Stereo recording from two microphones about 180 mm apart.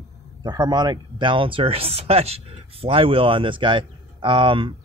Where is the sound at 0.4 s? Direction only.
20° right (ahead or behind).